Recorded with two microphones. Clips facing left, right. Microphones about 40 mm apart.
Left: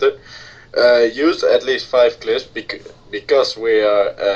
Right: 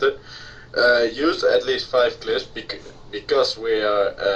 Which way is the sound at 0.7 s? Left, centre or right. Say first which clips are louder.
Left 5 dB; right.